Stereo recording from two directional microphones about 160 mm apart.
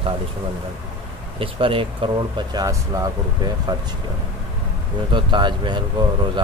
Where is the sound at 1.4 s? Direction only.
35° right (ahead or behind).